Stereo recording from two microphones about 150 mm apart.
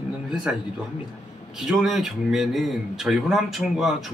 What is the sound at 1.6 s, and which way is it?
Speech, centre (ahead or behind).